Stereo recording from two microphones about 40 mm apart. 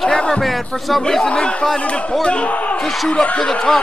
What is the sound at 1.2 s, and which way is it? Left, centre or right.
Speech, left.